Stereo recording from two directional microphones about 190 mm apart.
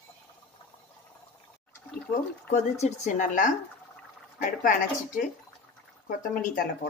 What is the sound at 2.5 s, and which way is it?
Speech, 40° left (ahead or behind).